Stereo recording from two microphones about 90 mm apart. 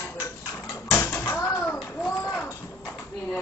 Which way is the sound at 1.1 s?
20° left (ahead or behind).